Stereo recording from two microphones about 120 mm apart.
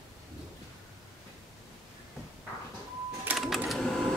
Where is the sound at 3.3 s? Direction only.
Centre (ahead or behind).